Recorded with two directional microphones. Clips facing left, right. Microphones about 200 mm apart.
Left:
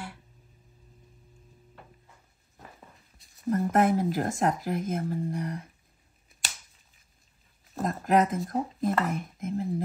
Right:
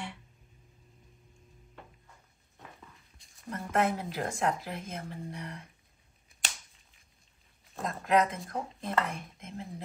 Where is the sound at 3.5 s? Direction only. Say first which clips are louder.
Left 6 dB; 45° left (ahead or behind).